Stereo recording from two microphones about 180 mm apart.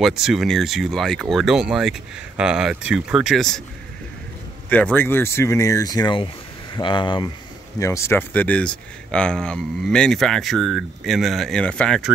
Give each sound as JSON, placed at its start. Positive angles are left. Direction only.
{"t": 0.0, "sound": "speech", "side_deg": 0}
{"t": 4.6, "sound": "speech", "side_deg": 10}
{"t": 7.8, "sound": "speech", "side_deg": 15}